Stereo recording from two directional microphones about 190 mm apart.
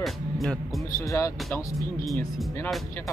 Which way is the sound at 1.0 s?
15° left (ahead or behind).